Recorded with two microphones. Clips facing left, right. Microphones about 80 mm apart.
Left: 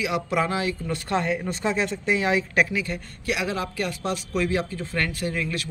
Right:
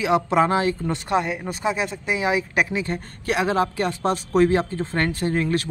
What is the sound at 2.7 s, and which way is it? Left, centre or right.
Speech, right.